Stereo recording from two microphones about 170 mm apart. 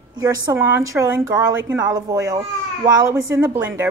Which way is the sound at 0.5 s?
10° right (ahead or behind).